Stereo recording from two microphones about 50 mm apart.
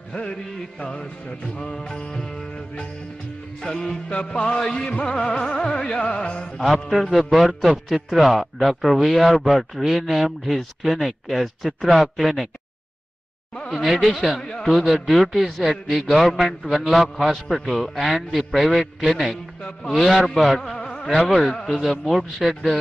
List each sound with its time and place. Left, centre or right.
0.1 s music: centre
4.1 s music: left
4.6 s music: centre
6.9 s a man's voice: centre
14.0 s a man's voice: centre
14.4 s a man's voice: centre
14.7 s a man's voice: centre
20.7 s a sound: centre
21.1 s a man's voice: centre